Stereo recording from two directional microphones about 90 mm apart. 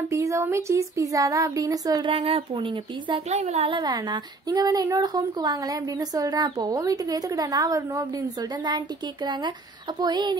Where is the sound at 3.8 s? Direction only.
55° right (ahead or behind).